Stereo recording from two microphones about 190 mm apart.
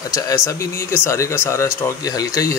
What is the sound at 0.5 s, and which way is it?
Speech, 15° left (ahead or behind).